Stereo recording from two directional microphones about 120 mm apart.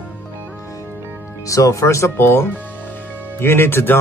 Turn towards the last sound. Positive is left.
turn(degrees=20)  # may be behind; listen again after turning